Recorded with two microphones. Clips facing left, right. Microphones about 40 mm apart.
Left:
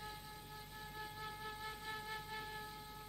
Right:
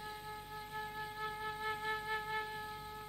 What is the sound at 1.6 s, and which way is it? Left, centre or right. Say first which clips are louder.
Flute: right 11 dB; right.